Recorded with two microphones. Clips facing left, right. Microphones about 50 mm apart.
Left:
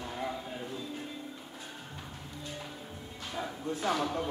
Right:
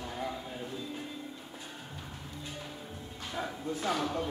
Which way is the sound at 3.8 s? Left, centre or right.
Centre.